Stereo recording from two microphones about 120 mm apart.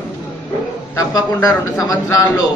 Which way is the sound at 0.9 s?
30° left (ahead or behind).